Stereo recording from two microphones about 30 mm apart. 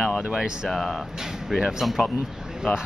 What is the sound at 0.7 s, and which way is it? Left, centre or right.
Speech, centre.